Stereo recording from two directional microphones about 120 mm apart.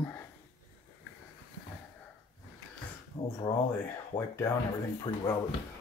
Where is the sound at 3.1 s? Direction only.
55° left (ahead or behind).